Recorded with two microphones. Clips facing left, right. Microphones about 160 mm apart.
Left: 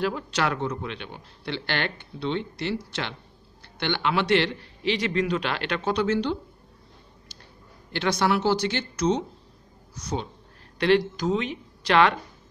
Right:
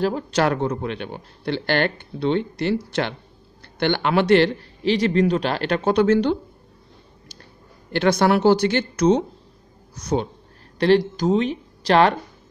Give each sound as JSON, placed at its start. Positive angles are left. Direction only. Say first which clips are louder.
{"t": 0.0, "sound": "speech", "louder": "right 6 dB", "side_deg": -40}
{"t": 7.9, "sound": "speech", "louder": "right 6 dB", "side_deg": -50}
{"t": 10.8, "sound": "speech", "louder": "right 4 dB", "side_deg": -35}